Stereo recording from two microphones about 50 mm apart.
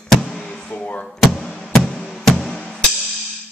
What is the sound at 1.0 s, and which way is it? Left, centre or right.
Music, centre.